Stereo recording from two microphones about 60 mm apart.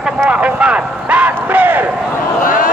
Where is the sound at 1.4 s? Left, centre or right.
Right.